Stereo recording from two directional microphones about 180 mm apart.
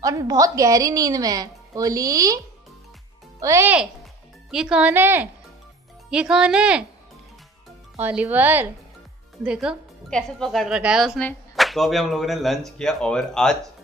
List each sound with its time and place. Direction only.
0.0 s a woman's voice: 20° right (ahead or behind)
7.9 s speech: 10° right (ahead or behind)